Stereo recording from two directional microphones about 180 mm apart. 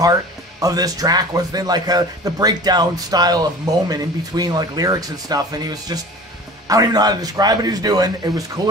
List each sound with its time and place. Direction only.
0.6 s speech: 20° right (ahead or behind)